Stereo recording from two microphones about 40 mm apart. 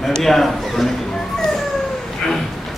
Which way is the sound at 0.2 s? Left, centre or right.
Centre.